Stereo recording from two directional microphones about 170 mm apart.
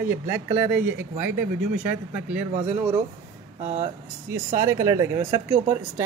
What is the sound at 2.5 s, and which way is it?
Speech, 40° right (ahead or behind).